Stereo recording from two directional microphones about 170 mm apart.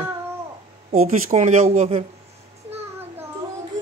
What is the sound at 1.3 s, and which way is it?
Speech, 45° right (ahead or behind).